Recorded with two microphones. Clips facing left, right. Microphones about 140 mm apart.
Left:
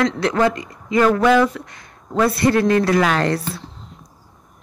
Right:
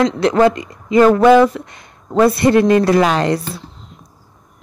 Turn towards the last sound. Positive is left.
turn(degrees=-15)  # may be behind; listen again after turning